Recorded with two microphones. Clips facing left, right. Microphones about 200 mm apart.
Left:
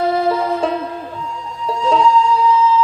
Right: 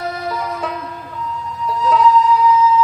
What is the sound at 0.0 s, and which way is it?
Music, 30° left (ahead or behind).